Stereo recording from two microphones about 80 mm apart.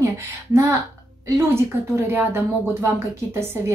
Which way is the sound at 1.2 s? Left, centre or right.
Right.